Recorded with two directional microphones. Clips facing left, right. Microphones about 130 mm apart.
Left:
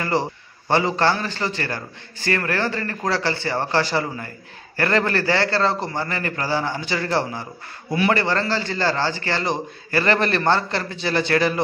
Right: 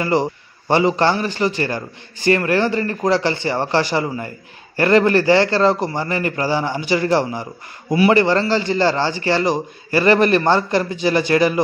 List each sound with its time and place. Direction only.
0.0 s a man's voice: 15° right (ahead or behind)